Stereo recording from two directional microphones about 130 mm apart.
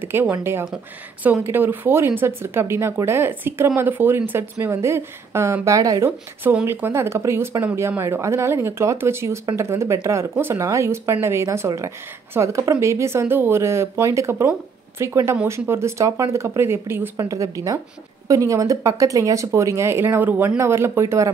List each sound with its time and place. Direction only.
0.0 s a woman's voice: 15° right (ahead or behind)